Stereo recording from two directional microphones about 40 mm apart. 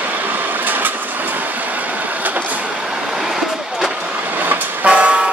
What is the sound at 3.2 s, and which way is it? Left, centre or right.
Vehicle, centre.